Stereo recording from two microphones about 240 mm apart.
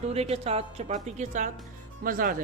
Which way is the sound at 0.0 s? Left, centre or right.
Right.